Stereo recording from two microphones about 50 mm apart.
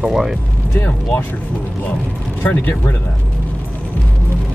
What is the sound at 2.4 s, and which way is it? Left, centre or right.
Speech, left.